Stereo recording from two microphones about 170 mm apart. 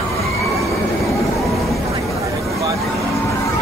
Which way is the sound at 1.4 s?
Centre (ahead or behind).